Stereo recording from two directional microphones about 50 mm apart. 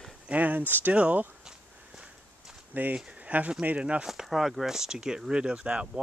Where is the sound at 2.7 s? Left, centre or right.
Right.